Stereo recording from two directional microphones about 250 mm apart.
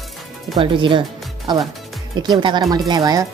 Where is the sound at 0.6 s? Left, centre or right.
Centre.